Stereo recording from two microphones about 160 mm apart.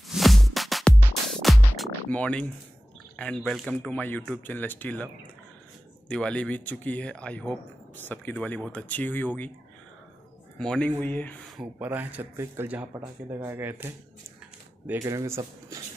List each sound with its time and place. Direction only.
0.1 s music: centre (ahead or behind)
3.2 s speech: 5° left (ahead or behind)
10.6 s speech: 5° left (ahead or behind)
11.8 s speech: 10° right (ahead or behind)